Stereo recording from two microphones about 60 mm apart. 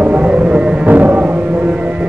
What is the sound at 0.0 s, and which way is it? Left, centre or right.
Music, right.